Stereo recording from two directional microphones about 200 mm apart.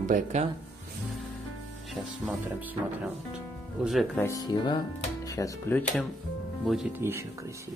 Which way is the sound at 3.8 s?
Centre (ahead or behind).